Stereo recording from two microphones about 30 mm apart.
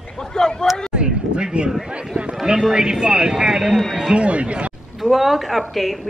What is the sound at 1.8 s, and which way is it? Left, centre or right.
Speech, right.